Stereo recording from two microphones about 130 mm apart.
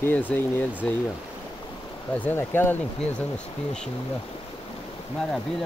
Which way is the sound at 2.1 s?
15° left (ahead or behind).